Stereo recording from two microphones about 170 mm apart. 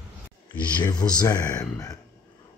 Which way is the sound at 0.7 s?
25° left (ahead or behind).